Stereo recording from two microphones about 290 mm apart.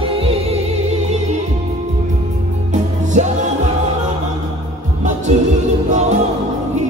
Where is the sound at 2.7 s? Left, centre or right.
Right.